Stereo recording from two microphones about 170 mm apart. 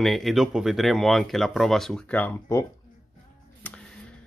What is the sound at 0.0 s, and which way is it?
Speech, centre (ahead or behind).